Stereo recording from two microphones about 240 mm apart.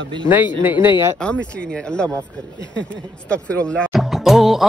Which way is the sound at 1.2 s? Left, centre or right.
Centre.